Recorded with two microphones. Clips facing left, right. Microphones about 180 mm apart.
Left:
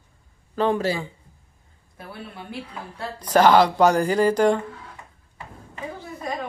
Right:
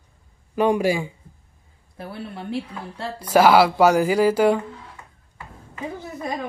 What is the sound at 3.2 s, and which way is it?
Speech, 10° right (ahead or behind).